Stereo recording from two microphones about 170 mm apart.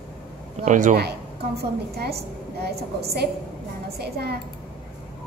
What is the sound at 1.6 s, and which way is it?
A woman's voice, 70° right (ahead or behind).